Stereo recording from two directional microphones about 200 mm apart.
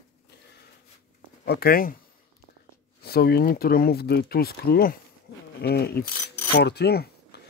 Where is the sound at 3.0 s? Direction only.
50° left (ahead or behind).